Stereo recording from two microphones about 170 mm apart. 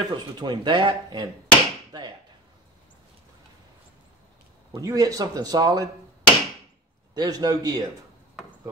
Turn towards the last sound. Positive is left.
turn(degrees=-25)  # may be behind; listen again after turning